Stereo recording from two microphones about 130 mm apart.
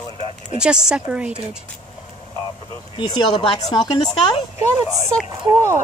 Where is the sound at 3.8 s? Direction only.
35° left (ahead or behind).